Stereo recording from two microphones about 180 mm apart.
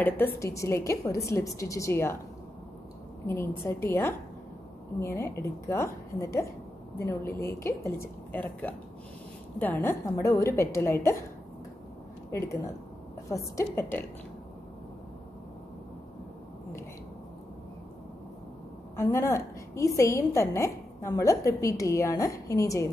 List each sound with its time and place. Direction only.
0.0 s a woman's voice: 15° left (ahead or behind)
3.3 s a woman's voice: 15° left (ahead or behind)
12.3 s speech: 15° left (ahead or behind)
13.6 s a woman's voice: 10° left (ahead or behind)
18.9 s a woman's voice: 15° left (ahead or behind)